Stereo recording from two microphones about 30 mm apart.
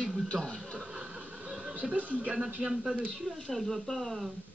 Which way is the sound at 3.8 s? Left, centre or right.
Centre.